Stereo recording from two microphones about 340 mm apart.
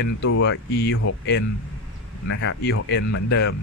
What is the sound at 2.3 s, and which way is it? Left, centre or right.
Speech, left.